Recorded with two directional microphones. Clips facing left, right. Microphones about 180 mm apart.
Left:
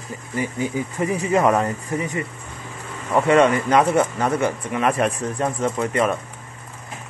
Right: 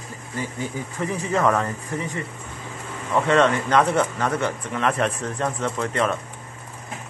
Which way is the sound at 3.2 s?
10° left (ahead or behind).